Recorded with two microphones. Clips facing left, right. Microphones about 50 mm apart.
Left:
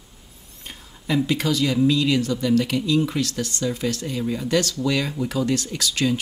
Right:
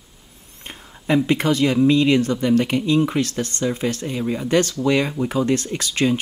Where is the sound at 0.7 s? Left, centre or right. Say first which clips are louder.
Right 5 dB; right.